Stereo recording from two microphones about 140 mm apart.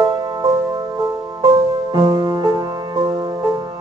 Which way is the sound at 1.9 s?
30° right (ahead or behind).